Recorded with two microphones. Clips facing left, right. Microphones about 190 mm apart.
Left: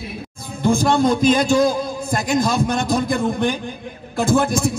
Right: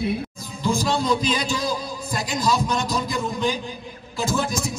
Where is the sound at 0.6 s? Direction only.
55° left (ahead or behind).